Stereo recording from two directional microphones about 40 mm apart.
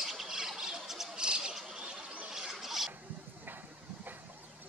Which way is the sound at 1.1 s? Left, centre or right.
Right.